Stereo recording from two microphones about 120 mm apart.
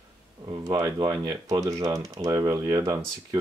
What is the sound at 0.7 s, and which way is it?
Speech, 30° right (ahead or behind).